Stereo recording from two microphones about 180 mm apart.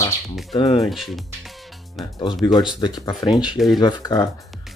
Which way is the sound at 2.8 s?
20° left (ahead or behind).